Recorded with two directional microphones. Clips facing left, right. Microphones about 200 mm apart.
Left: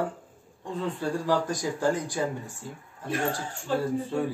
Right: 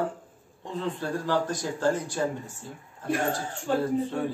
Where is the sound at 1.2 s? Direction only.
10° left (ahead or behind).